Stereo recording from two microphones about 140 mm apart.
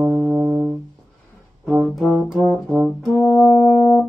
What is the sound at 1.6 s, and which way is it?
Brass instrument, 5° left (ahead or behind).